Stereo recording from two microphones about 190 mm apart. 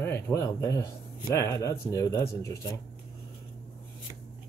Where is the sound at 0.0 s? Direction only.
15° left (ahead or behind).